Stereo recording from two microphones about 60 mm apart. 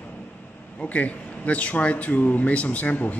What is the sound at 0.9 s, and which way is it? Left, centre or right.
Speech, left.